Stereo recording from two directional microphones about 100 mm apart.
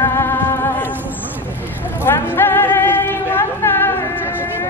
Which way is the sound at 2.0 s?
20° left (ahead or behind).